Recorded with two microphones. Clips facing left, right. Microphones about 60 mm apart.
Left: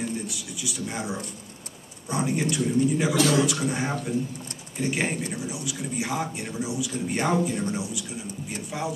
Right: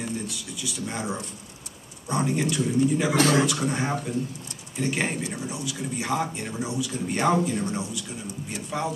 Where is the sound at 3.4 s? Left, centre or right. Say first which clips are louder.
Even; centre.